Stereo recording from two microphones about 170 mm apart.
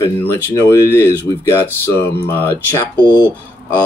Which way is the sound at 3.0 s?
15° right (ahead or behind).